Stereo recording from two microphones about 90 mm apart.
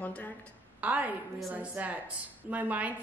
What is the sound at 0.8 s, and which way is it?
A woman's voice, 20° right (ahead or behind).